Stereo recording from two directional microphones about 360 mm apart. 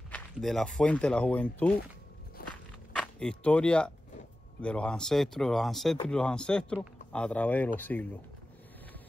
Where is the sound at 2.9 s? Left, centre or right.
Centre.